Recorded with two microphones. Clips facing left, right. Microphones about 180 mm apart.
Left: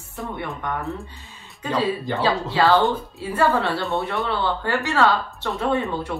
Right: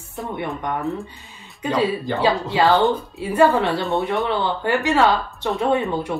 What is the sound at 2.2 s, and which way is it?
Speech, 15° right (ahead or behind).